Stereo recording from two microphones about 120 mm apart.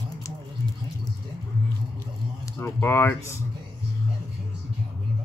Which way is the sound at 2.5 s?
20° left (ahead or behind).